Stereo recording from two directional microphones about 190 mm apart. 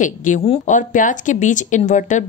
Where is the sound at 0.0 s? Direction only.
40° left (ahead or behind).